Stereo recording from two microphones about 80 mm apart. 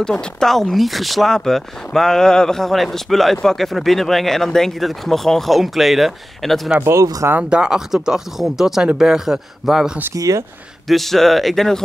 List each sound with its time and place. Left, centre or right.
0.0 s speech: centre
6.8 s speech: right
7.4 s speech: centre
10.1 s speech: right
10.9 s speech: centre